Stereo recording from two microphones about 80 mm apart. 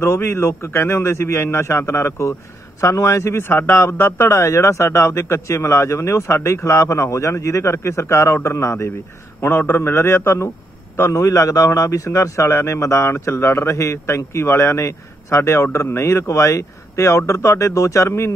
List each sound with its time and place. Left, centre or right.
0.0 s a man's voice: left